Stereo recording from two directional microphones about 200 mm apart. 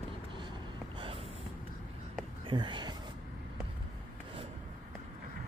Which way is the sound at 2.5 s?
25° right (ahead or behind).